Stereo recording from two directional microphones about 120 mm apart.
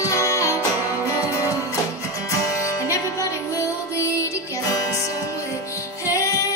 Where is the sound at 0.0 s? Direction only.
25° left (ahead or behind).